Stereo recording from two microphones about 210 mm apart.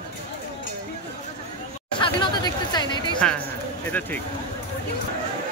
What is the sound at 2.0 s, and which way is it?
Speech, 20° left (ahead or behind).